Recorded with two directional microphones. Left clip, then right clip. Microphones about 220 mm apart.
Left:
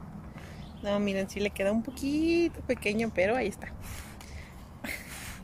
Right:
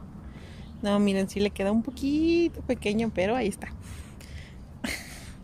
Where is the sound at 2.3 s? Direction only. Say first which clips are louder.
Right 2 dB; 20° right (ahead or behind).